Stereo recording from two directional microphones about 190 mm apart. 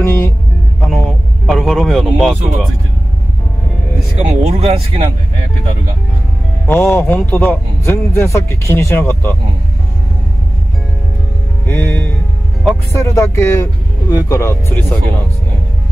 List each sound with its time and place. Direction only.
0.0 s music: 15° left (ahead or behind)
0.7 s a sound: centre (ahead or behind)
4.2 s speech: 35° right (ahead or behind)
6.7 s a man's voice: 10° left (ahead or behind)
11.6 s a man's voice: 10° left (ahead or behind)